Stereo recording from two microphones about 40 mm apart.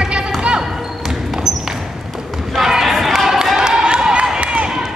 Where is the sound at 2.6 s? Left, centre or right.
Centre; by 4.5 s right.